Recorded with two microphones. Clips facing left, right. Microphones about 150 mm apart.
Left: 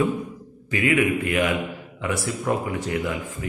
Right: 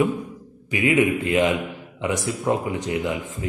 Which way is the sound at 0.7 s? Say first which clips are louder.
Right 2 dB; 20° right (ahead or behind).